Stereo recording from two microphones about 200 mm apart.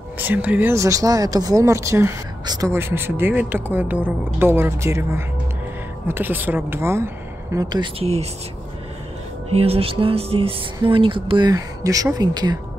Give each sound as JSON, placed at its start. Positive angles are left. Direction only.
{"t": 0.2, "sound": "speech", "side_deg": -10}
{"t": 9.5, "sound": "speech", "side_deg": -30}